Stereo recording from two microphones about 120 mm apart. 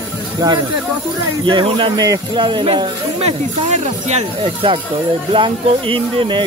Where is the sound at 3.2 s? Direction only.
65° right (ahead or behind).